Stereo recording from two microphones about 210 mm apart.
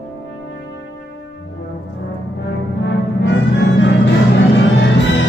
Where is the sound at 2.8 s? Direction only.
60° left (ahead or behind).